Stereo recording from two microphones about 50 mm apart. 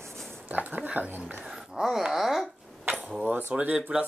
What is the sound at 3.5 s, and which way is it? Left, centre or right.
Speech, right.